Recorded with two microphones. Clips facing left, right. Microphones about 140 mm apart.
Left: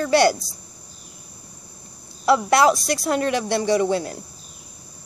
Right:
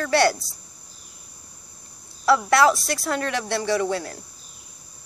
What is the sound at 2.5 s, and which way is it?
Speech, 15° left (ahead or behind).